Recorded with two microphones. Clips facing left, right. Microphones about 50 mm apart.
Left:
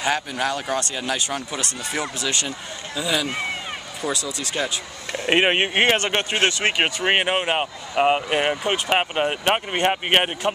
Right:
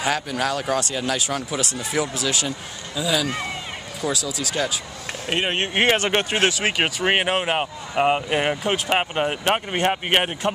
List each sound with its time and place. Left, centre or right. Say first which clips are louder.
0.1 s speech: left 1 dB; centre
3.0 s speech: right 1 dB; centre
5.2 s speech: left 6 dB; left
5.9 s speech: right 1 dB; centre